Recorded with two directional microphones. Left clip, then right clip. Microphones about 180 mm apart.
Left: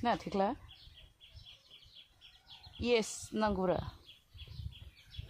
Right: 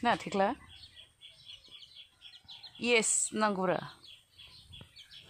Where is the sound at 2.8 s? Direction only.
25° right (ahead or behind).